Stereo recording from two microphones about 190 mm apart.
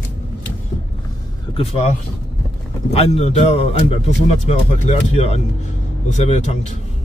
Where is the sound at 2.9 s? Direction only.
35° left (ahead or behind).